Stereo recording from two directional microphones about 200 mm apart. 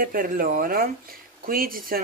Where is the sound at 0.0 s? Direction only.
45° right (ahead or behind).